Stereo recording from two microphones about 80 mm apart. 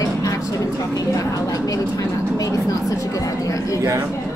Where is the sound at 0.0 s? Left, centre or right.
Left.